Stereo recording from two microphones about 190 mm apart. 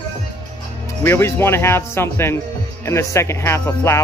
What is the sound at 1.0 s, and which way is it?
Speech, 10° left (ahead or behind).